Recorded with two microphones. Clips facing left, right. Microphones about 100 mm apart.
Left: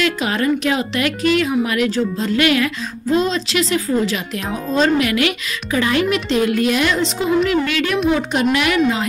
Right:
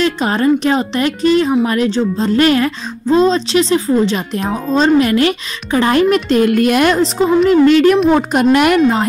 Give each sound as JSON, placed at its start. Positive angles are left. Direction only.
{"t": 0.0, "sound": "speech", "side_deg": -35}